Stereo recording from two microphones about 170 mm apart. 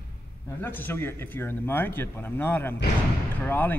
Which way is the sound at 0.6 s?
10° left (ahead or behind).